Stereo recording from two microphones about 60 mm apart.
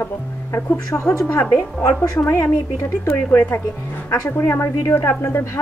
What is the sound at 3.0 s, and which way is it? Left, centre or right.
A woman's voice, left.